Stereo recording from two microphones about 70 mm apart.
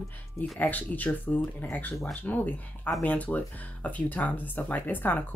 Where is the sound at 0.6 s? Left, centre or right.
Left.